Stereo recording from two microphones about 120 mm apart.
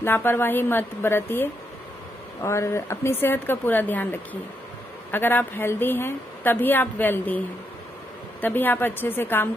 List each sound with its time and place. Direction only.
0.0 s a woman's voice: 20° left (ahead or behind)